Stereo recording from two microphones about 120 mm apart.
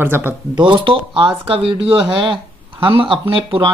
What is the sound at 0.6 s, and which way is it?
Speech, 40° right (ahead or behind).